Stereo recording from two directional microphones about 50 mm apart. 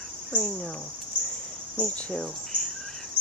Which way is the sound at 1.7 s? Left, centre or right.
Left.